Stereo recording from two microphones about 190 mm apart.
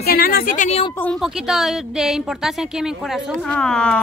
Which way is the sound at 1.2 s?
Centre (ahead or behind).